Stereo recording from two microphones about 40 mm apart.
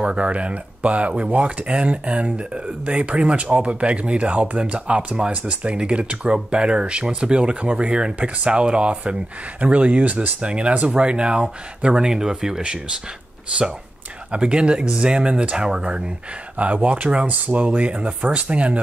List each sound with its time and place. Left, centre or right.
0.0 s speech: right
10.4 s speech: right
13.5 s speech: right
16.5 s speech: right